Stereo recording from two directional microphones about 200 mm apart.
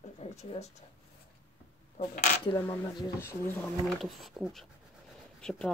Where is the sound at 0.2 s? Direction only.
30° left (ahead or behind).